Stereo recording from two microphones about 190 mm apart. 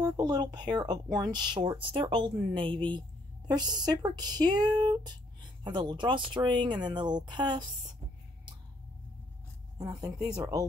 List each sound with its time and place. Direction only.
0.0 s a woman's voice: 20° right (ahead or behind)
10.0 s speech: 20° right (ahead or behind)